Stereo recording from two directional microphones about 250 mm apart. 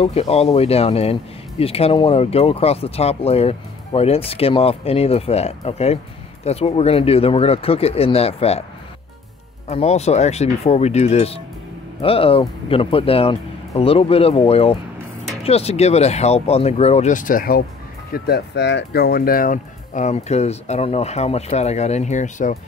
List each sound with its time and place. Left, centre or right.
0.0 s speech: left
9.7 s speech: left